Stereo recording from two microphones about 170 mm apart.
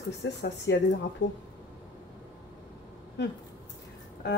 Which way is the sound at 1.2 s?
90° left.